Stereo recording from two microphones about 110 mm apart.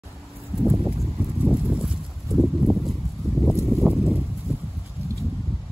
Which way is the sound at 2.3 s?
Centre (ahead or behind).